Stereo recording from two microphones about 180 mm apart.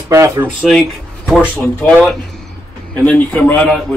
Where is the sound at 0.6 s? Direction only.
Centre (ahead or behind).